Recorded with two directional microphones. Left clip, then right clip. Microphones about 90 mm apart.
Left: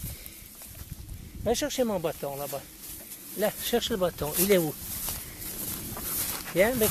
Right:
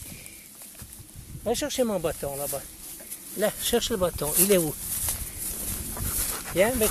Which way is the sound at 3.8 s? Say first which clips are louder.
Right 1 dB; 30° right (ahead or behind).